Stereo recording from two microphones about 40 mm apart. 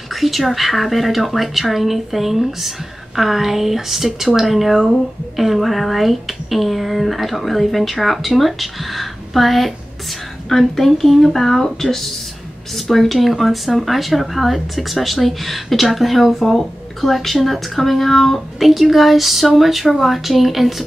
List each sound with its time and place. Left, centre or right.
0.1 s speech: centre